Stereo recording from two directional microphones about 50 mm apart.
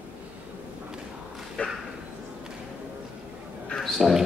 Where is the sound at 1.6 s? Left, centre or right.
Left.